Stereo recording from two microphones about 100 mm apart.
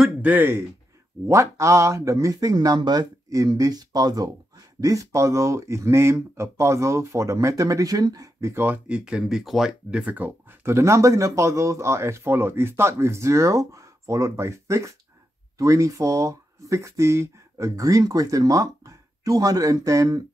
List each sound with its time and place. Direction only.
0.0 s speech: 15° right (ahead or behind); by 8.6 s 30° right (ahead or behind)
8.6 s speech: 10° right (ahead or behind); by 20.2 s 35° right (ahead or behind)